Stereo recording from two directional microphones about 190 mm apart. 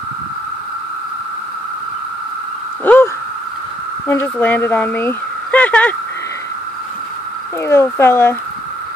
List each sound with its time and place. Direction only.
2.8 s owl: 10° left (ahead or behind)
4.1 s speech: 10° left (ahead or behind)
7.6 s speech: 10° left (ahead or behind)